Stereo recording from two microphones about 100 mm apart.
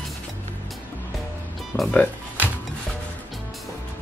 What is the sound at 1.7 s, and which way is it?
Speech, 25° left (ahead or behind).